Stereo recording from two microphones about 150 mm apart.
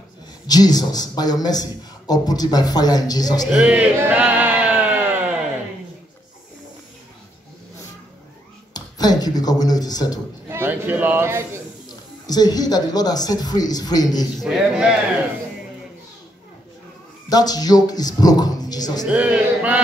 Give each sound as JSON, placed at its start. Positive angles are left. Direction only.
{"t": 0.5, "sound": "speech", "side_deg": 25}
{"t": 3.5, "sound": "a sound", "side_deg": -10}
{"t": 8.7, "sound": "speech", "side_deg": 25}
{"t": 10.5, "sound": "a man's voice", "side_deg": -15}
{"t": 12.3, "sound": "speech", "side_deg": 25}
{"t": 14.4, "sound": "a man's voice", "side_deg": -5}
{"t": 17.3, "sound": "speech", "side_deg": 25}
{"t": 19.0, "sound": "a man's voice", "side_deg": -10}